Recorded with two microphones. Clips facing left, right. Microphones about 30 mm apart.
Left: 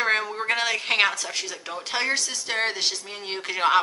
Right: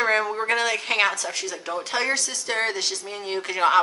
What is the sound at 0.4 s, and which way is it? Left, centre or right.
Speech, centre.